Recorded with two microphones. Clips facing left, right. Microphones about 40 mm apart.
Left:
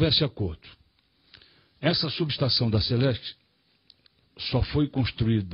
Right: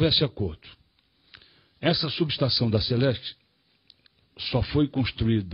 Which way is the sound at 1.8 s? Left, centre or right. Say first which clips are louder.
Right 1 dB; centre.